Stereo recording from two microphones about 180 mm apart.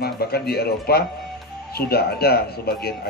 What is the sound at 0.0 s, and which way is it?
Speech, 60° left (ahead or behind).